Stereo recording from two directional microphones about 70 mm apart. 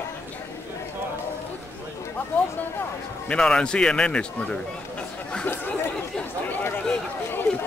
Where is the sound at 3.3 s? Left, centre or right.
Centre.